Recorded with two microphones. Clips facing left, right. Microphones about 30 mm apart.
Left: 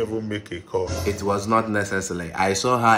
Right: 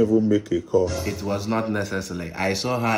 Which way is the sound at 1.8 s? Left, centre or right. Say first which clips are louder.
Left 2 dB; left.